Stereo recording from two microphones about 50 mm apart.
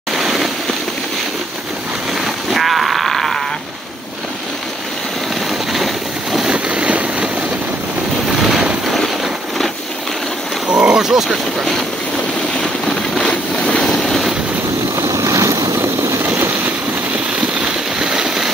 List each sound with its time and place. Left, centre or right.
0.1 s vehicle: centre
2.2 s sheep: centre
6.5 s vehicle: right
8.3 s boat: centre
8.8 s a sound: centre
10.7 s roaring cats: right
11.0 s roaring cats: centre
13.2 s vehicle: centre
15.0 s vehicle: right
17.4 s vehicle: centre